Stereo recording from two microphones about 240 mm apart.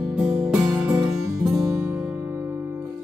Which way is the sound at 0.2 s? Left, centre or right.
Centre.